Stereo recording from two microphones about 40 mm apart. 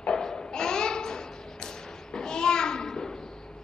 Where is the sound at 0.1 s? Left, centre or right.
Centre.